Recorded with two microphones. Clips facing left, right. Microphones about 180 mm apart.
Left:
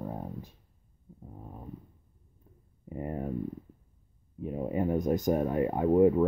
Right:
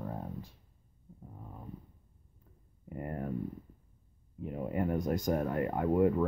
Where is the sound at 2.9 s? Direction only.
20° left (ahead or behind).